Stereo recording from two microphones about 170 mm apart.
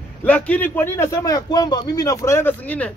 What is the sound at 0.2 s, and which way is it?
A man's voice, 10° left (ahead or behind).